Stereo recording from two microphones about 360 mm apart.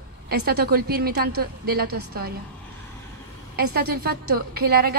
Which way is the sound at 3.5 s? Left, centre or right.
Right.